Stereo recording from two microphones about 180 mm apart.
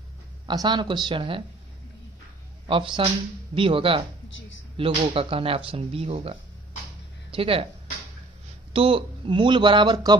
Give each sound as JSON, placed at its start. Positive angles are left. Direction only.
{"t": 0.5, "sound": "speech", "side_deg": -25}
{"t": 2.6, "sound": "speech", "side_deg": -30}
{"t": 8.7, "sound": "speech", "side_deg": -30}